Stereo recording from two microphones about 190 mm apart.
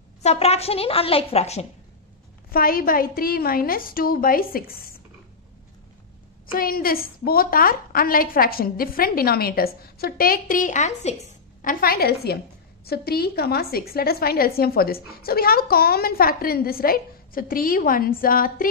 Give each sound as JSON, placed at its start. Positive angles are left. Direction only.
{"t": 0.2, "sound": "a woman's voice", "side_deg": 35}
{"t": 2.5, "sound": "a woman's voice", "side_deg": 50}
{"t": 6.4, "sound": "a woman's voice", "side_deg": 50}
{"t": 11.6, "sound": "a woman's voice", "side_deg": 50}